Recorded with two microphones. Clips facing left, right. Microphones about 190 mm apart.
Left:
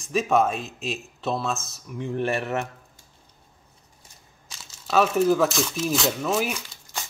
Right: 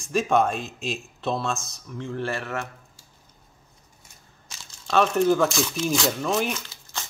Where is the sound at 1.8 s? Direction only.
15° left (ahead or behind).